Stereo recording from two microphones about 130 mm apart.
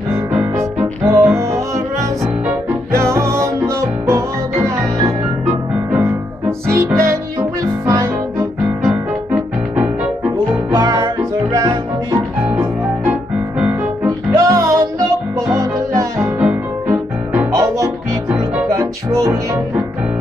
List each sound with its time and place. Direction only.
0.3 s music: 15° right (ahead or behind)
6.7 s music: 20° right (ahead or behind)
8.8 s music: 15° right (ahead or behind)
10.7 s music: 30° right (ahead or behind)
12.4 s music: 10° right (ahead or behind)
14.0 s music: 25° right (ahead or behind)
17.5 s music: 25° right (ahead or behind)